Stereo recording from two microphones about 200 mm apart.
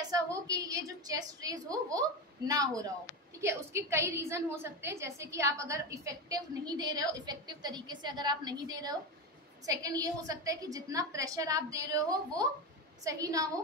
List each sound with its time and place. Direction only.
0.1 s a woman's voice: 15° right (ahead or behind)